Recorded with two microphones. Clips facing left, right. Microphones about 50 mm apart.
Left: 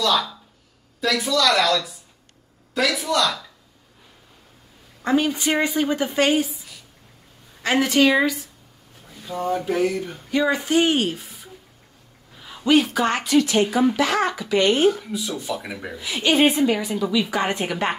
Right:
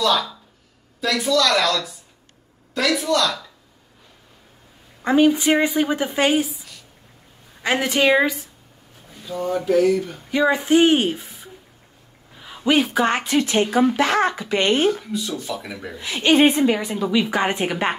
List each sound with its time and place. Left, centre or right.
0.0 s speech: centre
5.0 s a woman's voice: centre
7.6 s speech: centre
9.4 s speech: centre
10.3 s a woman's voice: centre
11.1 s a sound: right
12.4 s speech: centre; by 14.9 s right
15.0 s speech: centre
16.0 s speech: right